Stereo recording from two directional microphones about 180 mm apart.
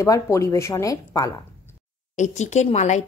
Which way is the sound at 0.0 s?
15° left (ahead or behind).